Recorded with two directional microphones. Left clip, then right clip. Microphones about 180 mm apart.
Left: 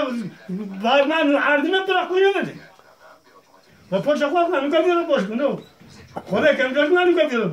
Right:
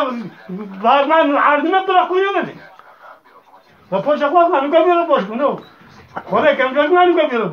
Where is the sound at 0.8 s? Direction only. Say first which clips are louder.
Right 5 dB; 40° left (ahead or behind).